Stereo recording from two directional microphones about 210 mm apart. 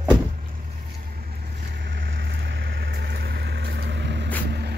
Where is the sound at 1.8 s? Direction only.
55° right (ahead or behind).